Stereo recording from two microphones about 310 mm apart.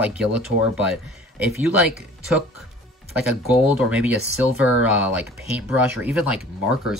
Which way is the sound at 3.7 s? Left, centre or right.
Centre.